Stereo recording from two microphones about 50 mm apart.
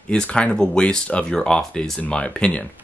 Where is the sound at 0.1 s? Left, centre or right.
Centre.